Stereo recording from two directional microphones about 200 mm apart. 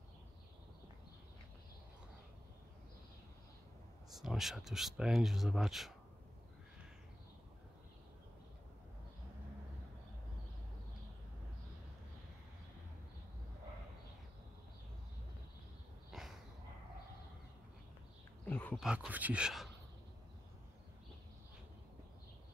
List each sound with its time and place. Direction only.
4.1 s speech: centre (ahead or behind)
16.1 s a sound: centre (ahead or behind)
18.4 s wild animals: 10° left (ahead or behind)
18.9 s speech: 5° right (ahead or behind)